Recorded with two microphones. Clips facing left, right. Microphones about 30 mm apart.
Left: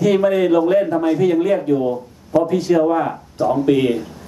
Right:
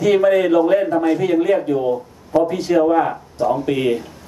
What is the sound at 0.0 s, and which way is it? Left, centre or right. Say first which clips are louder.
Speech: right 1 dB; centre.